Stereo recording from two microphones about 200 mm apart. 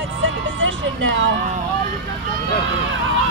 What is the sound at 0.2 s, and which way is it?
Music, 70° right (ahead or behind).